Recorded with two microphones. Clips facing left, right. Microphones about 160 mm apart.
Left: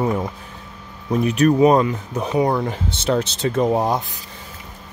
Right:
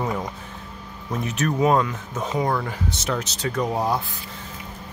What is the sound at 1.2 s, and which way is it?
Speech, 15° left (ahead or behind).